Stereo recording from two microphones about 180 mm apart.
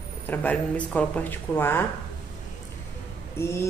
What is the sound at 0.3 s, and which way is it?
A woman's voice, 10° left (ahead or behind).